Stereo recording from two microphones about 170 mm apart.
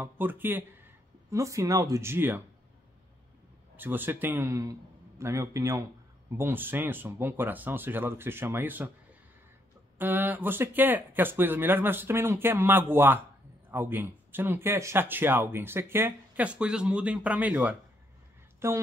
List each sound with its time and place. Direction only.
0.0 s speech: 10° right (ahead or behind)
3.7 s speech: 10° right (ahead or behind)
9.9 s speech: 10° right (ahead or behind)